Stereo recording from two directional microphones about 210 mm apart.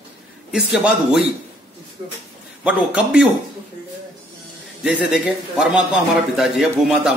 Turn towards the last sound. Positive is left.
turn(degrees=0)  # may be behind; listen again after turning